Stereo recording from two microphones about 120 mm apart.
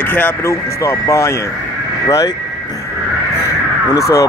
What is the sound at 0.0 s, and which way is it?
Speech, 15° left (ahead or behind).